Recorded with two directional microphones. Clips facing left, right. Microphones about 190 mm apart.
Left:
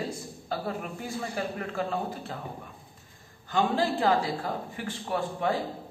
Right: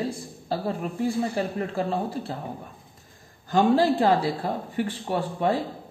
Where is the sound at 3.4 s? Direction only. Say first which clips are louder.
Right 6 dB; 40° right (ahead or behind).